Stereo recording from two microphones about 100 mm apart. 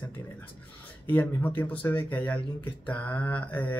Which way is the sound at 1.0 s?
20° left (ahead or behind).